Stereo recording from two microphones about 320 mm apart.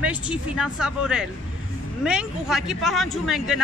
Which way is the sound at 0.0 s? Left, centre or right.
Centre.